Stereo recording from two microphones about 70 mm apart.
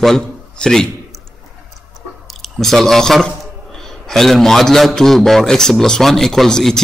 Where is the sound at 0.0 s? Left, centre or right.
Centre.